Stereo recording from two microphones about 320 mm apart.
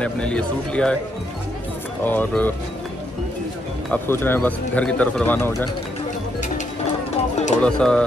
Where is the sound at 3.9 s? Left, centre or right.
Centre.